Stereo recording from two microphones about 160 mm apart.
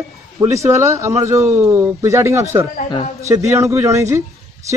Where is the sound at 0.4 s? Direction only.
20° right (ahead or behind).